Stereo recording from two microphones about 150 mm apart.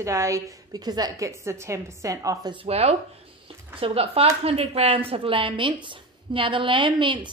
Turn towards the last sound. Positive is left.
turn(degrees=-35)  # may be behind; listen again after turning